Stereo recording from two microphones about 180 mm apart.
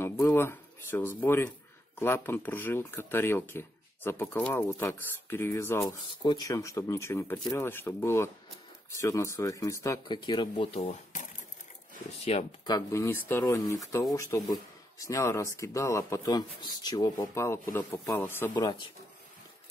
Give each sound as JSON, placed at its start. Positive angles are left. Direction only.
{"t": 0.0, "sound": "speech", "side_deg": 15}
{"t": 12.3, "sound": "speech", "side_deg": 35}
{"t": 12.6, "sound": "speech", "side_deg": 20}
{"t": 18.5, "sound": "speech", "side_deg": 25}